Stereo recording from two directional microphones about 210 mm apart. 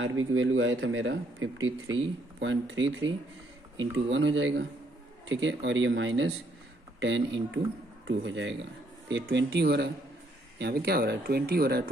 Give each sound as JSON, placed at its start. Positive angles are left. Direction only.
{"t": 0.2, "sound": "speech", "side_deg": -70}
{"t": 4.1, "sound": "speech", "side_deg": -60}